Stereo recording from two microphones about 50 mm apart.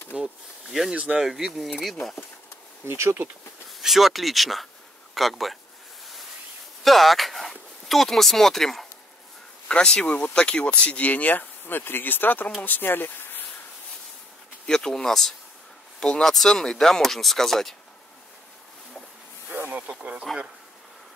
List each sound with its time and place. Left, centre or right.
0.1 s speech: centre
0.7 s speech: centre
0.9 s speech: centre
1.2 s speech: centre
2.8 s speech: right
3.8 s speech: centre
6.8 s speech: centre
9.7 s speech: centre; by 13.5 s left
14.7 s speech: centre
20.0 s speech: right